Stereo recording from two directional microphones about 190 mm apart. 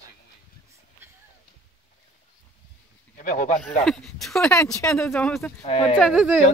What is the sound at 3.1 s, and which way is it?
Speech, 45° left (ahead or behind).